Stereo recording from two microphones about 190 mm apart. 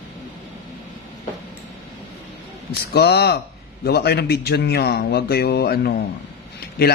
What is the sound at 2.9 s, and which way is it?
Speech, 60° left (ahead or behind).